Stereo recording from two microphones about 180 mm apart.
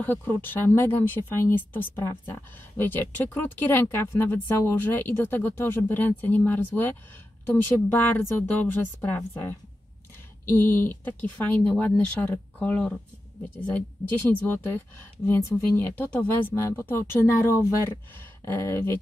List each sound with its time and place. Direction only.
0.0 s speech: 10° left (ahead or behind)